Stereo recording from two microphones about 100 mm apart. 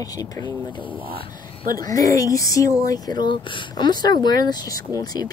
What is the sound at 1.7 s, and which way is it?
Speech, 35° left (ahead or behind).